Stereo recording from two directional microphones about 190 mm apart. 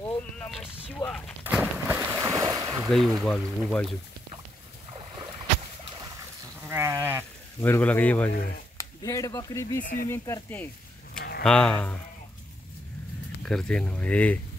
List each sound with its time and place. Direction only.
0.5 s speech: centre (ahead or behind)
1.4 s boat: 10° right (ahead or behind)
2.9 s speech: centre (ahead or behind)
6.7 s sheep: 15° right (ahead or behind)
7.6 s speech: 10° left (ahead or behind)
9.8 s speech: 45° left (ahead or behind)
10.0 s speech: 15° left (ahead or behind)
13.4 s speech: 5° left (ahead or behind)